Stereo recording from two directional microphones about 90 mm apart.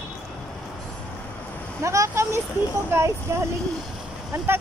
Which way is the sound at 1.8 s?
35° right (ahead or behind).